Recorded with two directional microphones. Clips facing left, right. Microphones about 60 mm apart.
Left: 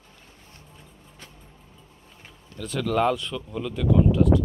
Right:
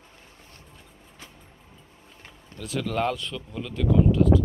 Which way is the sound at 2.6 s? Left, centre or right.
Centre.